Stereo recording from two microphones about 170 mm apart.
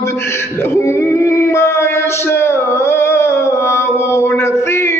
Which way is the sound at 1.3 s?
15° left (ahead or behind).